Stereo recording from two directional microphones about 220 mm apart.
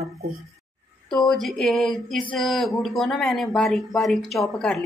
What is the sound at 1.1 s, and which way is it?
Speech, centre (ahead or behind).